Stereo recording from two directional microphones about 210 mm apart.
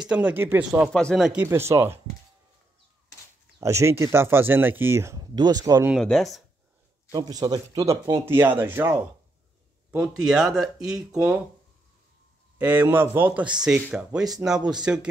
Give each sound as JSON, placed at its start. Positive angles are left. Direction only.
{"t": 0.1, "sound": "speech", "side_deg": -10}
{"t": 0.9, "sound": "speech", "side_deg": 0}
{"t": 1.4, "sound": "speech", "side_deg": -10}
{"t": 3.5, "sound": "speech", "side_deg": -15}
{"t": 5.9, "sound": "speech", "side_deg": 0}
{"t": 7.1, "sound": "speech", "side_deg": -20}
{"t": 8.1, "sound": "speech", "side_deg": -10}
{"t": 12.5, "sound": "speech", "side_deg": -10}